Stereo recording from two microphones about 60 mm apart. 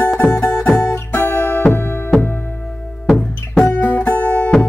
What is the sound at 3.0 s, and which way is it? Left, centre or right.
Music, centre.